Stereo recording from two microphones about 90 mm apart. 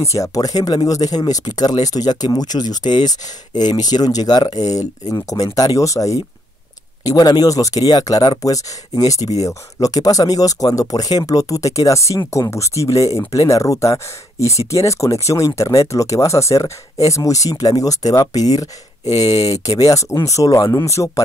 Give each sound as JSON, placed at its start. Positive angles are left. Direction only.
{"t": 0.0, "sound": "speech", "side_deg": 35}